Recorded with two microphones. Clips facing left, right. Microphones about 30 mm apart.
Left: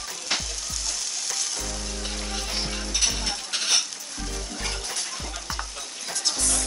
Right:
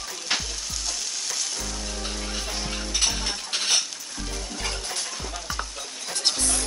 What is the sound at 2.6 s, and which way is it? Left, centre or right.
Music, centre.